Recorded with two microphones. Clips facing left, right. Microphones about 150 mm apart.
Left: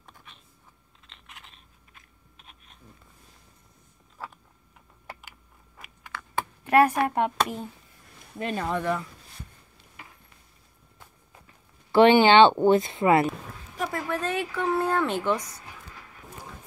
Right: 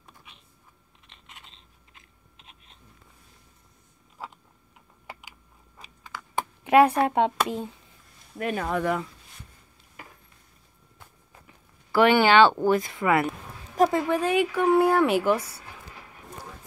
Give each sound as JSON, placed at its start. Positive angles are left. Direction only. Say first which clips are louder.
{"t": 0.0, "sound": "a sound", "louder": "left 1 dB", "side_deg": -10}
{"t": 1.0, "sound": "chewing", "louder": "left 1 dB", "side_deg": -20}
{"t": 4.2, "sound": "tick-tock", "louder": "even", "side_deg": -10}
{"t": 6.1, "sound": "typing", "louder": "even", "side_deg": -15}
{"t": 7.1, "sound": "speech", "louder": "right 2 dB", "side_deg": -25}
{"t": 8.4, "sound": "speech", "louder": "right 1 dB", "side_deg": -5}
{"t": 11.9, "sound": "speech", "louder": "left 2 dB", "side_deg": 25}
{"t": 13.9, "sound": "speech", "louder": "right 6 dB", "side_deg": -15}